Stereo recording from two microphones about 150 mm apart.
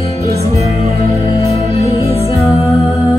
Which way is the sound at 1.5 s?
40° left (ahead or behind).